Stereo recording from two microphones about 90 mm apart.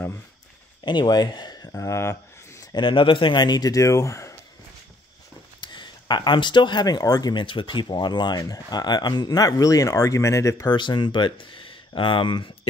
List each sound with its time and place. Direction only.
0.8 s speech: 55° left (ahead or behind)
1.7 s a sound: 35° left (ahead or behind)
2.7 s speech: 65° left (ahead or behind); by 4.4 s 35° left (ahead or behind)
5.6 s speech: 60° left (ahead or behind)
7.4 s speech: 70° left (ahead or behind); by 10.7 s 35° left (ahead or behind)
10.7 s speech: 55° left (ahead or behind)